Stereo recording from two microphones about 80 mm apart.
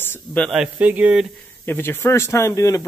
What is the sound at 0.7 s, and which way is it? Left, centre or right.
Speech, centre.